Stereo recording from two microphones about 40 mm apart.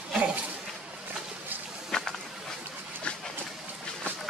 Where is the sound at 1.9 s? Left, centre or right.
Centre.